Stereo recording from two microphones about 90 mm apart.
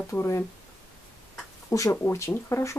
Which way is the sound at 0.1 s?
30° left (ahead or behind).